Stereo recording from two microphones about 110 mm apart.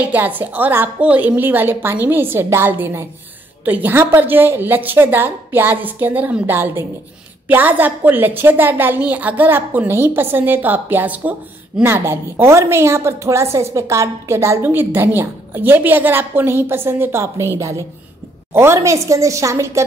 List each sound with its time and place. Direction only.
0.0 s a woman's voice: 15° right (ahead or behind)